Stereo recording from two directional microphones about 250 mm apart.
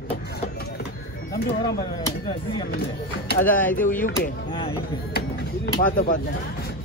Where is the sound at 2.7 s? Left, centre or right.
Left.